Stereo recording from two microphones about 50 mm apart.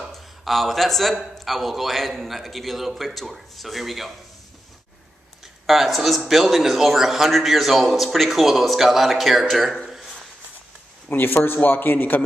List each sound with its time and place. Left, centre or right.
0.1 s a man's voice: centre
5.4 s a man's voice: centre
11.1 s speech: left